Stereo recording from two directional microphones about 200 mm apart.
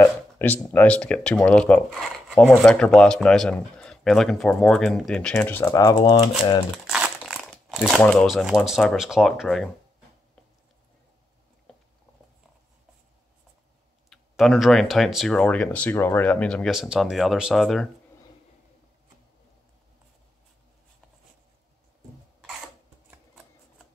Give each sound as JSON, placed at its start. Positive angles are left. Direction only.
{"t": 0.0, "sound": "speech", "side_deg": 10}
{"t": 5.9, "sound": "speech", "side_deg": 25}
{"t": 6.9, "sound": "speech", "side_deg": 0}
{"t": 14.1, "sound": "speech", "side_deg": 0}